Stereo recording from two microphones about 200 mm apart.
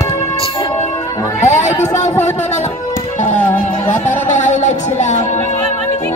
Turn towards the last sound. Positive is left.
turn(degrees=35)  # may be behind; listen again after turning